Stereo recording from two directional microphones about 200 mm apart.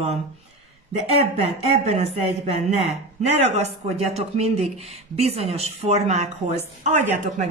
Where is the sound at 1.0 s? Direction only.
30° right (ahead or behind).